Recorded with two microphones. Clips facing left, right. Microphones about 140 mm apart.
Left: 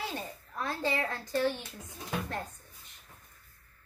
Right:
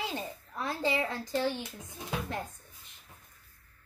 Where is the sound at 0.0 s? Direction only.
15° right (ahead or behind).